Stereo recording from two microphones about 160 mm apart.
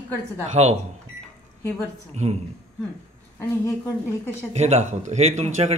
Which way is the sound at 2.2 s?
45° right (ahead or behind).